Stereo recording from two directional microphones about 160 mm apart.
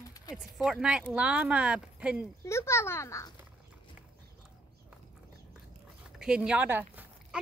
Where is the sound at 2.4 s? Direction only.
15° left (ahead or behind).